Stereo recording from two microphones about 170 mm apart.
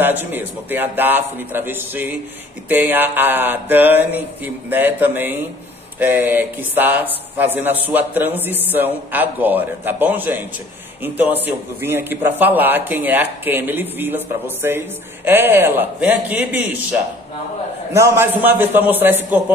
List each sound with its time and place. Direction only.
0.0 s speech: 10° right (ahead or behind)